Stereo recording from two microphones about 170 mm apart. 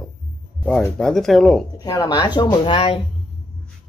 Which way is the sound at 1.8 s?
25° left (ahead or behind).